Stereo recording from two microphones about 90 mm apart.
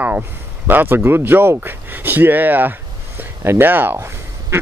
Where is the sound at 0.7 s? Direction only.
20° right (ahead or behind).